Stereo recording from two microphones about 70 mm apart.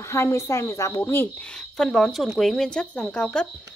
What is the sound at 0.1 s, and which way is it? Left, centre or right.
A woman's voice, left.